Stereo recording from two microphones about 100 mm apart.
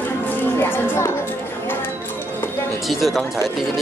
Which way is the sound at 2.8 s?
Centre (ahead or behind).